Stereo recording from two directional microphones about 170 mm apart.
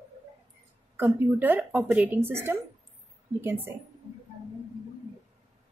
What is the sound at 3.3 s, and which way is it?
Speech, 10° right (ahead or behind).